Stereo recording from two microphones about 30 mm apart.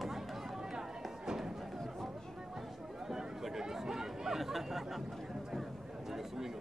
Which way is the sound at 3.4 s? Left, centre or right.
Centre.